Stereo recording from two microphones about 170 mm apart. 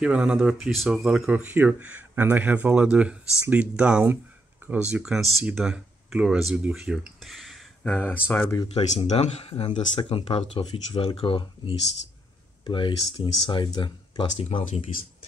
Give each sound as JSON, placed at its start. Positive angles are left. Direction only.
{"t": 0.0, "sound": "speech", "side_deg": -5}
{"t": 7.8, "sound": "speech", "side_deg": 10}
{"t": 8.7, "sound": "speech", "side_deg": 40}